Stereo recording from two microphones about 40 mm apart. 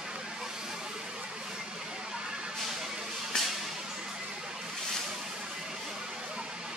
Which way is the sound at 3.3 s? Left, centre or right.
Centre.